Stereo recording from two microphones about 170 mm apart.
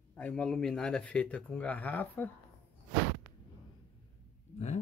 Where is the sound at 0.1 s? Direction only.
5° left (ahead or behind).